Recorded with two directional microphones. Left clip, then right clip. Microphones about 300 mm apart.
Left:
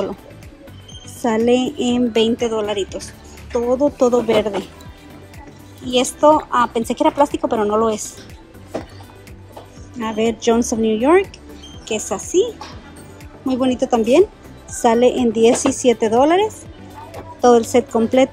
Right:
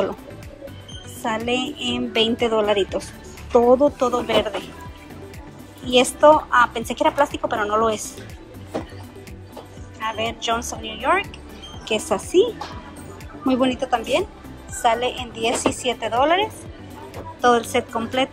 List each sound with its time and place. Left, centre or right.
1.2 s speech: centre
5.9 s speech: centre
9.9 s speech: centre